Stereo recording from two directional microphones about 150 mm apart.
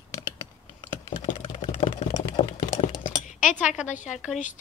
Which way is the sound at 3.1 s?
60° left (ahead or behind).